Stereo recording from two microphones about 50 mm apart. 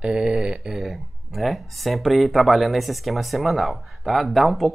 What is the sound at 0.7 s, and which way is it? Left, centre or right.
Speech, centre.